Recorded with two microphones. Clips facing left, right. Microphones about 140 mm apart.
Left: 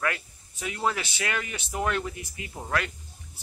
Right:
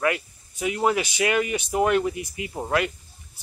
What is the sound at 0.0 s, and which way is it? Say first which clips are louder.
Speech: right 6 dB; 15° right (ahead or behind).